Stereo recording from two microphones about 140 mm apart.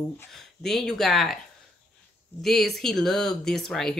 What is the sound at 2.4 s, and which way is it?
Speech, centre (ahead or behind).